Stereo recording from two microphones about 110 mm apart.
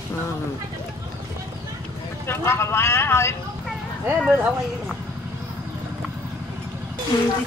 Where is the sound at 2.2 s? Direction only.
25° left (ahead or behind).